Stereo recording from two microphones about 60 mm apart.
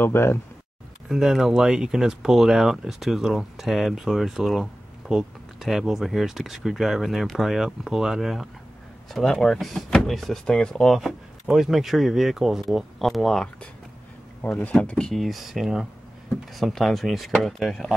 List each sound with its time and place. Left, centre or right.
0.0 s speech: left
1.0 s speech: centre
9.1 s speech: centre
10.4 s speech: centre
14.5 s speech: left
15.0 s speech: centre